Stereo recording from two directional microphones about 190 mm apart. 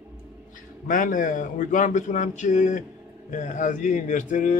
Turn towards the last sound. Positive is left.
turn(degrees=40)  # may be behind; listen again after turning